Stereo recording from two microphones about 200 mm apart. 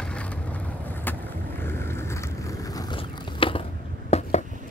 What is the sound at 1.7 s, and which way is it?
Vehicle, 10° left (ahead or behind).